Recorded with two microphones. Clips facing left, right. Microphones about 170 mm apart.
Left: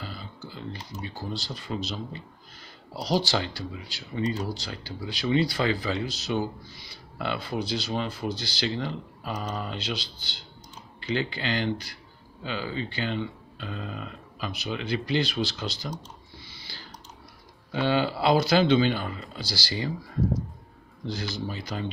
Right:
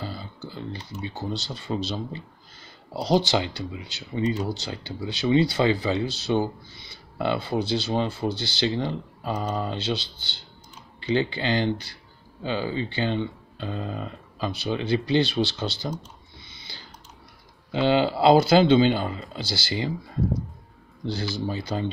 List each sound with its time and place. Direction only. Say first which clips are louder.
1.0 s speech: right 4 dB; 20° right (ahead or behind)
16.4 s a sound: even; 20° right (ahead or behind)
17.7 s speech: right 4 dB; 25° right (ahead or behind)
21.1 s speech: right 4 dB; 30° right (ahead or behind)